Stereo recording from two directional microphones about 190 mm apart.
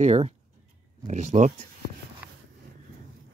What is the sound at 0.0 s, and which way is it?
Speech, 35° right (ahead or behind).